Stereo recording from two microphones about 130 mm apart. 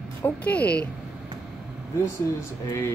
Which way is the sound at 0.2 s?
10° left (ahead or behind).